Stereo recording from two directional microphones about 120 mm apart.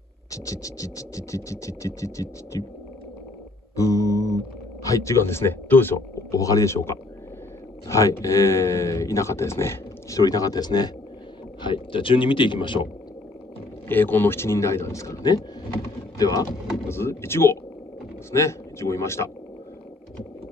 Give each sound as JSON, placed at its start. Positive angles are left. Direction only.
{"t": 0.3, "sound": "speech", "side_deg": 30}
{"t": 3.7, "sound": "speech", "side_deg": 25}
{"t": 11.6, "sound": "speech", "side_deg": 45}
{"t": 13.8, "sound": "speech", "side_deg": 15}
{"t": 16.8, "sound": "speech", "side_deg": 20}